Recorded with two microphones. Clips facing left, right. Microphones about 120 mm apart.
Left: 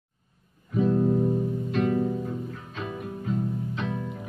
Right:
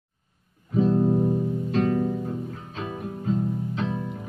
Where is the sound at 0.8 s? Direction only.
30° right (ahead or behind).